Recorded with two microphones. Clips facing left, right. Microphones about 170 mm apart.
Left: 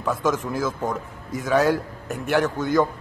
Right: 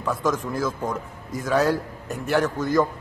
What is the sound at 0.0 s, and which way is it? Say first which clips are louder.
A man's voice: left 1 dB; centre (ahead or behind).